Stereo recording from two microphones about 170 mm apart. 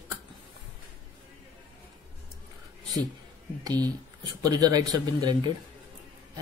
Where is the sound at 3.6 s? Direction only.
20° right (ahead or behind).